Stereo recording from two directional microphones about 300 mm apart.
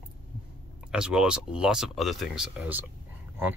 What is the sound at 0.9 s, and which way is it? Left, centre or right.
Speech, centre.